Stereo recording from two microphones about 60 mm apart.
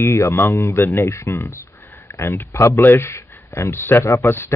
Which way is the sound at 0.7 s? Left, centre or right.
Left.